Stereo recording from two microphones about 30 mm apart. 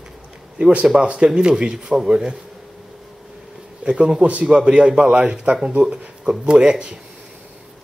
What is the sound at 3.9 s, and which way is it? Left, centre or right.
A man's voice, right.